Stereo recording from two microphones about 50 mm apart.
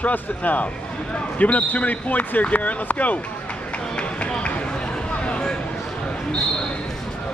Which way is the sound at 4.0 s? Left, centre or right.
Left.